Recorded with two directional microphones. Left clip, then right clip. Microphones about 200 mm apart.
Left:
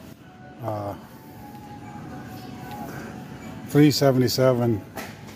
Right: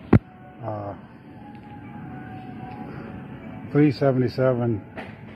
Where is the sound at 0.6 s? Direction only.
25° left (ahead or behind).